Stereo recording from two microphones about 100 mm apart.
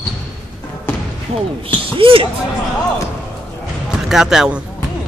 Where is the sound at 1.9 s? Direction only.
65° right (ahead or behind).